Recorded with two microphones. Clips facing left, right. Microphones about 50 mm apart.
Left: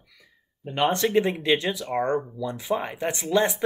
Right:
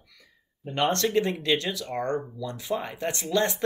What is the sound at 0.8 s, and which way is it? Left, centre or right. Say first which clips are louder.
Speech: left 3 dB; centre.